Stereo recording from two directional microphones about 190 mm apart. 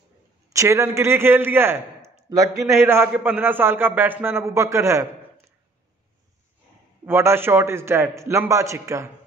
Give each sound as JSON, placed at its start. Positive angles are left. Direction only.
{"t": 0.5, "sound": "a man's voice", "side_deg": -15}
{"t": 7.1, "sound": "a man's voice", "side_deg": -10}